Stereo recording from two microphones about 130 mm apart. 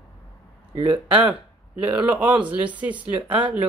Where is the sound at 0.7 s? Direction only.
35° right (ahead or behind).